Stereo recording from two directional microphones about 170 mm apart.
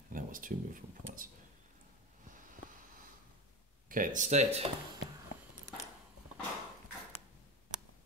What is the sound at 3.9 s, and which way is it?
Speech, 50° right (ahead or behind).